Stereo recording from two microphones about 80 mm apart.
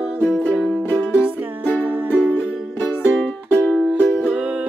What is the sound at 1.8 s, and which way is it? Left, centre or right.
Music, centre.